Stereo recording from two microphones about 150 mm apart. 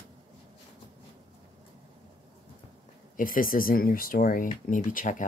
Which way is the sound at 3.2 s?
70° left (ahead or behind).